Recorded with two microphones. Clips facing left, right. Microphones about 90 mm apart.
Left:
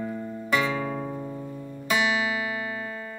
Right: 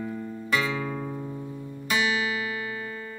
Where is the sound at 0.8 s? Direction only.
20° left (ahead or behind).